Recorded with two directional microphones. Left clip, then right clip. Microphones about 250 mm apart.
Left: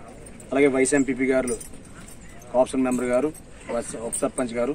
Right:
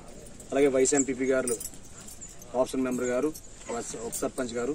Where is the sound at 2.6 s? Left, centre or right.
Centre.